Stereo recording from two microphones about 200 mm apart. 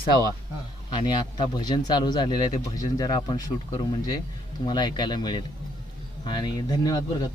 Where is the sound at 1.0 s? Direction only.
20° left (ahead or behind).